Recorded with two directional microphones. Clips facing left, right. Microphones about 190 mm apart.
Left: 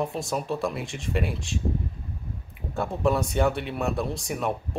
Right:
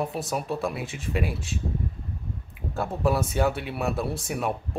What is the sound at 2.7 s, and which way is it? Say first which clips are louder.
Speech: left 1 dB; centre (ahead or behind).